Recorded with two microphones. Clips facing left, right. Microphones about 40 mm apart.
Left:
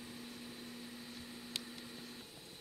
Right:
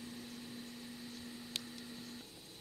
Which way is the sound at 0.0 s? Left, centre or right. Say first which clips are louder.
Right 1 dB; centre.